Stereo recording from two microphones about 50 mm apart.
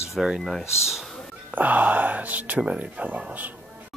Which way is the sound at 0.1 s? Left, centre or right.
Centre.